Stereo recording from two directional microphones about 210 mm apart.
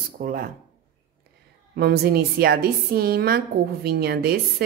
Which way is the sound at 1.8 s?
50° right (ahead or behind).